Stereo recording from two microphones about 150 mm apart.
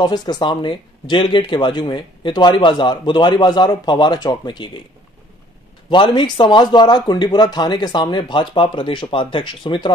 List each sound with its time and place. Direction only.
0.0 s speech: 30° left (ahead or behind)
5.9 s speech: 30° left (ahead or behind)